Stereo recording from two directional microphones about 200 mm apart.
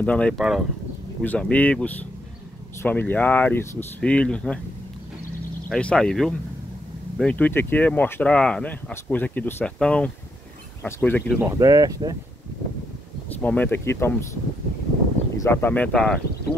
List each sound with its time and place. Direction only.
0.0 s speech: 5° left (ahead or behind)
5.7 s speech: 5° left (ahead or behind)
11.3 s speech: 15° right (ahead or behind)
13.4 s speech: 10° left (ahead or behind)
15.3 s speech: 15° left (ahead or behind)